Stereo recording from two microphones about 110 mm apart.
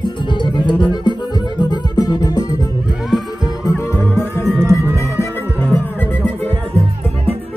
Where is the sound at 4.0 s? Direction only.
20° left (ahead or behind).